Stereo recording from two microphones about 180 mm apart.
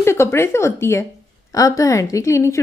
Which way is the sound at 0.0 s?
15° left (ahead or behind).